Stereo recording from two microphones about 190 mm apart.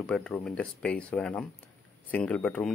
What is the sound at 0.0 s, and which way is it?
Speech, 5° left (ahead or behind).